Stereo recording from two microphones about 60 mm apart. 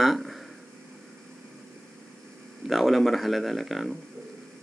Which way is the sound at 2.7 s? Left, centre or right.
Centre.